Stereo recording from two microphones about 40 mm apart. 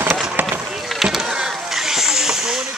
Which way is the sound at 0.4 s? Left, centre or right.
Right.